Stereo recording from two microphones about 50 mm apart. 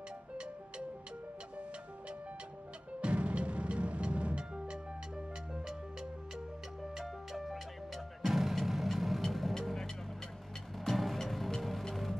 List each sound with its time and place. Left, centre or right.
3.0 s music: right
6.8 s music: centre
10.8 s music: centre